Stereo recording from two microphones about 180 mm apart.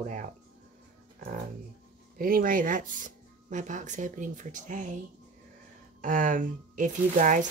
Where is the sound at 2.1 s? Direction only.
50° right (ahead or behind).